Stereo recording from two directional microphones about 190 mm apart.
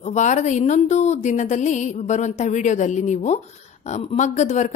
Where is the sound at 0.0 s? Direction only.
40° left (ahead or behind).